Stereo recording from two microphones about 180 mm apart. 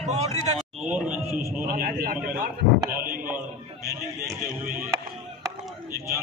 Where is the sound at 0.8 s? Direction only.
5° right (ahead or behind).